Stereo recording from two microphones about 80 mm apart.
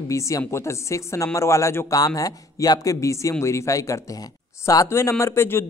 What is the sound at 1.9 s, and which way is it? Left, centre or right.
Speech, left.